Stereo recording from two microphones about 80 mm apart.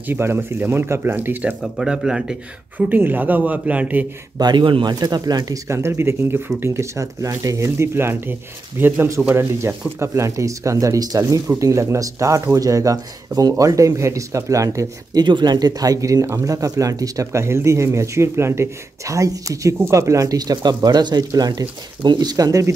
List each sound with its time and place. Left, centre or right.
0.0 s speech: right
1.6 s speech: centre
2.9 s speech: right
4.4 s speech: right
5.7 s speech: right
15.1 s speech: right